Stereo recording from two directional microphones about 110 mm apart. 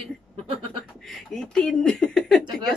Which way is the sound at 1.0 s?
5° left (ahead or behind).